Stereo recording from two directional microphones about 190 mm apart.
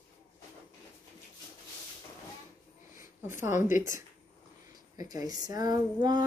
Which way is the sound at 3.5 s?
40° left (ahead or behind).